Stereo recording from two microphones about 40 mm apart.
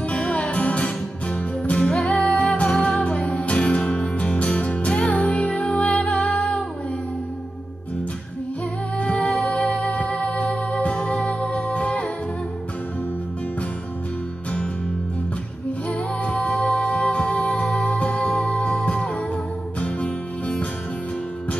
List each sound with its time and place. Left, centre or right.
0.1 s music: left
8.9 s music: left
16.3 s music: left